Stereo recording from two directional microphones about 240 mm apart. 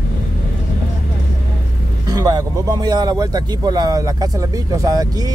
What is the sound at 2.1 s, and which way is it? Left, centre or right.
Speech, centre.